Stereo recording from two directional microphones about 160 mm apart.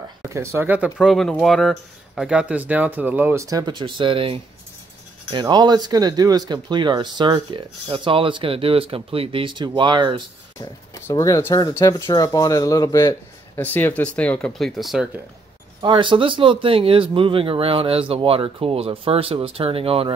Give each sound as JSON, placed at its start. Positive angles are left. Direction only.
{"t": 0.3, "sound": "speech", "side_deg": -15}
{"t": 1.0, "sound": "speech", "side_deg": 0}
{"t": 10.6, "sound": "speech", "side_deg": 20}
{"t": 13.6, "sound": "speech", "side_deg": 10}
{"t": 15.8, "sound": "speech", "side_deg": -30}